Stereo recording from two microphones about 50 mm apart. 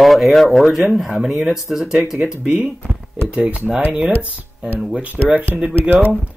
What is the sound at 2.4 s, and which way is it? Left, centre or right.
Speech, right.